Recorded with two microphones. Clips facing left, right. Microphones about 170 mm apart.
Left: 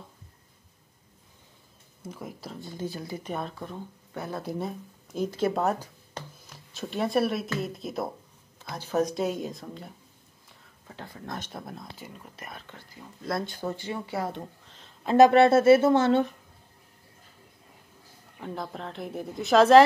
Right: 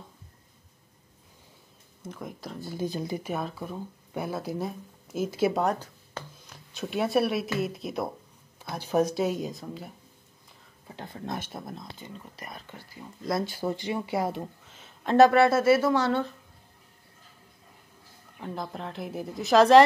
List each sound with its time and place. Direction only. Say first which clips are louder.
2.0 s speech: right 1 dB; 5° left (ahead or behind)
2.8 s speech: right 4 dB; 20° right (ahead or behind)
3.3 s speech: right 2 dB; 5° right (ahead or behind)
5.6 s speech: even; 5° left (ahead or behind)
8.5 s speech: right 2 dB; 10° right (ahead or behind)
11.2 s speech: right 2 dB; 10° right (ahead or behind)
15.0 s speech: left 1 dB; 15° left (ahead or behind)
18.4 s speech: even; centre (ahead or behind)